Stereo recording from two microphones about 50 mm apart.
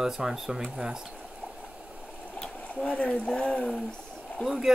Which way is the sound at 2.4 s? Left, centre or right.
Centre.